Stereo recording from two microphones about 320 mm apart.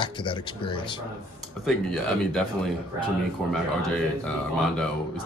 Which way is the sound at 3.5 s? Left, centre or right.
Centre.